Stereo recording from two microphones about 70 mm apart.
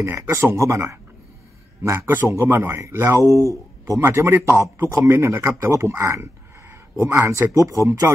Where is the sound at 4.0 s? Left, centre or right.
Right.